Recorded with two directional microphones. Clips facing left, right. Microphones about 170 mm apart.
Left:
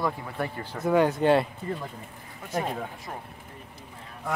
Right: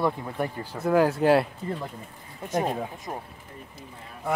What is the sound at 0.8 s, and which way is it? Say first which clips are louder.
Speech: right 1 dB; centre (ahead or behind).